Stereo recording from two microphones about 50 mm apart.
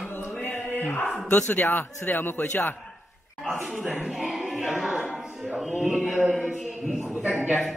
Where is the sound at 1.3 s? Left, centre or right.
Left.